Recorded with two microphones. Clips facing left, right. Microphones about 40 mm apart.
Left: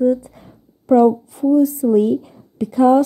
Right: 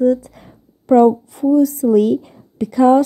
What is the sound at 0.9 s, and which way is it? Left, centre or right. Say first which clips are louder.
Speech: right 2 dB; right.